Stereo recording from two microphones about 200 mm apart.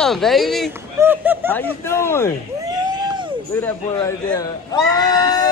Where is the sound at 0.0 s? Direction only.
Centre (ahead or behind).